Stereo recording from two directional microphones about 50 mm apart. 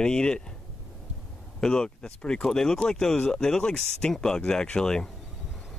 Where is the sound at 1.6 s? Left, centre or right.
Centre.